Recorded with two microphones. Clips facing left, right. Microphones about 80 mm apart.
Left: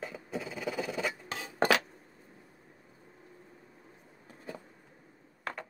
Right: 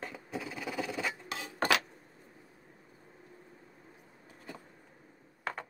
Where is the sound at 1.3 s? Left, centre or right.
Left.